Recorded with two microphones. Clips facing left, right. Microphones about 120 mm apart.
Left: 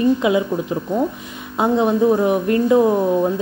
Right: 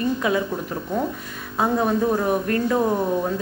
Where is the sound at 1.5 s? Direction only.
20° left (ahead or behind).